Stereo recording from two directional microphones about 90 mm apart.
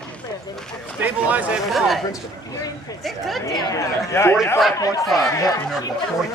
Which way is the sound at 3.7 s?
35° left (ahead or behind).